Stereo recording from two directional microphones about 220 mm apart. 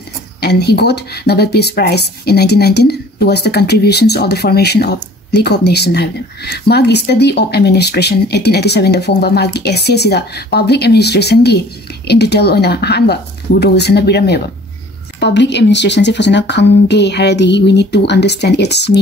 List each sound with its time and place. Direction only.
0.4 s speech: 50° left (ahead or behind)